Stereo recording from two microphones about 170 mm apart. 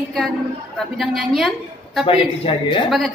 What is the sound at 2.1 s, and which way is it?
Speech, 30° left (ahead or behind).